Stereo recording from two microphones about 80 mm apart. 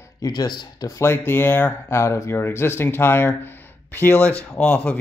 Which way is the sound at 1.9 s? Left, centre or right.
Left.